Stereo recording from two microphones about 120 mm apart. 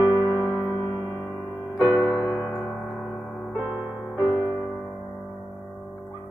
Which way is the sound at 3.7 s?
10° right (ahead or behind).